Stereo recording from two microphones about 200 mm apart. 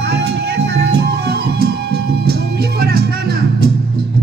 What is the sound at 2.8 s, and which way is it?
Music, 50° right (ahead or behind).